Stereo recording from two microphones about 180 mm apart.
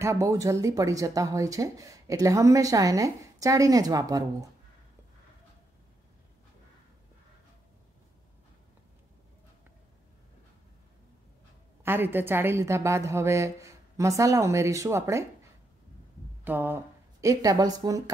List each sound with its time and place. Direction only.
0.0 s speech: 15° right (ahead or behind)
11.8 s speech: 10° right (ahead or behind)
16.4 s a woman's voice: 10° right (ahead or behind)